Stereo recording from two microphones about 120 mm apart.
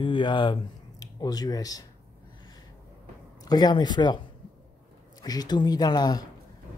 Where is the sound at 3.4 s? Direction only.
35° left (ahead or behind).